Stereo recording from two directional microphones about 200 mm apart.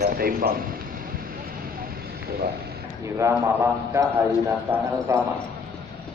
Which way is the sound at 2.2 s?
50° right (ahead or behind).